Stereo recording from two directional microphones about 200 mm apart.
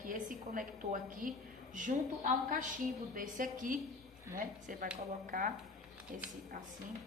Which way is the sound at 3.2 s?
40° right (ahead or behind).